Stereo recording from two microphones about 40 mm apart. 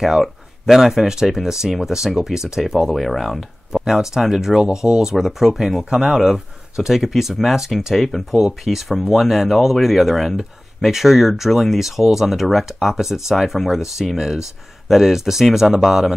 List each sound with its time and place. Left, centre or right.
0.2 s speech: centre
3.7 s speech: centre
4.6 s speech: right
5.0 s speech: centre